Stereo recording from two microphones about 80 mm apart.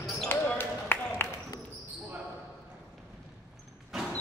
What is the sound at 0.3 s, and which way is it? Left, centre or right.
Basketball bounce, left.